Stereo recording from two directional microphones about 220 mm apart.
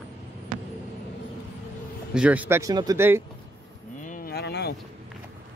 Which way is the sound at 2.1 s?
5° right (ahead or behind).